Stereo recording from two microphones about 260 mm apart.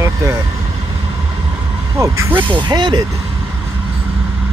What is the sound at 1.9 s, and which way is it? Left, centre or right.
Speech, centre.